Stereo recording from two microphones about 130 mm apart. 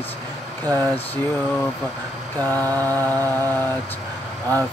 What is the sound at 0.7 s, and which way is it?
Mantra, 15° left (ahead or behind).